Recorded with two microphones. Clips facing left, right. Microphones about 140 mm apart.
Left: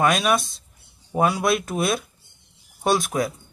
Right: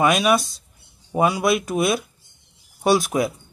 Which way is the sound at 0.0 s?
5° right (ahead or behind).